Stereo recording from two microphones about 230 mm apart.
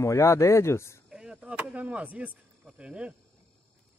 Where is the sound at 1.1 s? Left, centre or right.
Centre.